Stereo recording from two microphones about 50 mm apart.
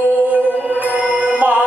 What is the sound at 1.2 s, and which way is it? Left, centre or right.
Music, right.